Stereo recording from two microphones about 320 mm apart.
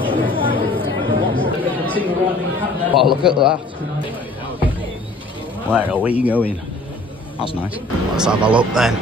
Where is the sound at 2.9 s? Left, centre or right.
Centre.